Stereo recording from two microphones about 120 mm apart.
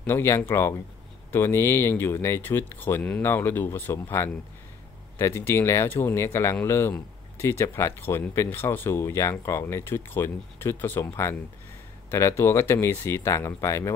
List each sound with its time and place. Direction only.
0.0 s speech: 20° left (ahead or behind)